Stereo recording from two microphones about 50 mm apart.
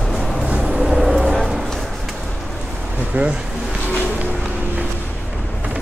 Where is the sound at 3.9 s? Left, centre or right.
Left.